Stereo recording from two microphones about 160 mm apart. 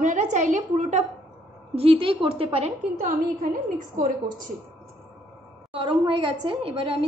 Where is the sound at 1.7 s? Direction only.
35° right (ahead or behind).